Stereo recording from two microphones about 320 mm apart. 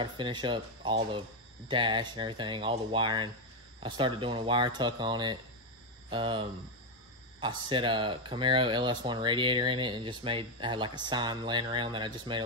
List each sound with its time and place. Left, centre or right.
0.0 s speech: centre